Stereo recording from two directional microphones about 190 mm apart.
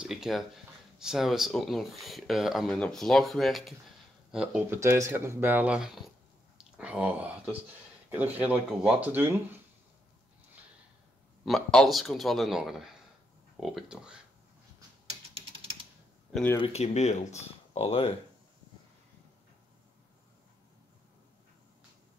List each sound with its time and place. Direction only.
0.0 s speech: centre (ahead or behind)
11.4 s speech: centre (ahead or behind)
16.5 s speech: 30° left (ahead or behind)